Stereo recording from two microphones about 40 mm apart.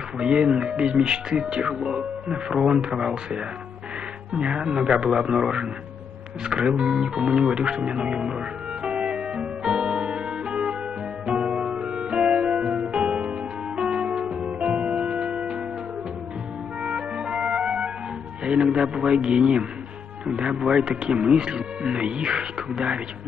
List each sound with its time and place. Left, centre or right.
0.2 s speech: right
6.7 s music: right
16.8 s music: right
18.4 s speech: right